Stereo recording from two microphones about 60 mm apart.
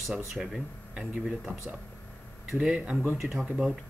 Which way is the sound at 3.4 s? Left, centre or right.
Right.